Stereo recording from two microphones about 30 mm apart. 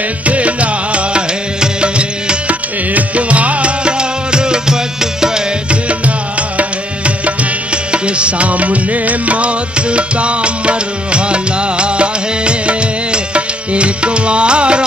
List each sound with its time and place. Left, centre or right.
0.3 s music: right
1.6 s music: right
2.9 s music: right
3.8 s music: right
5.7 s music: right
7.7 s music: right